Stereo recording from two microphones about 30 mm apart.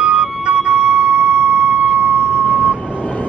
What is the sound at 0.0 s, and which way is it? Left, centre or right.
Music, right.